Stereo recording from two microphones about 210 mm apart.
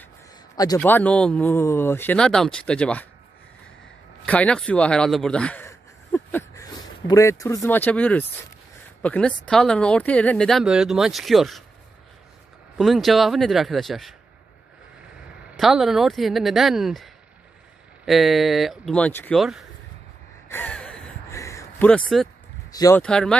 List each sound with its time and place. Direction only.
0.7 s speech: 10° left (ahead or behind)
4.3 s speech: 5° left (ahead or behind)
12.7 s speech: centre (ahead or behind)
15.5 s speech: centre (ahead or behind)
20.4 s gasp: 10° left (ahead or behind)
22.7 s speech: 15° left (ahead or behind)
23.0 s speech: 5° left (ahead or behind)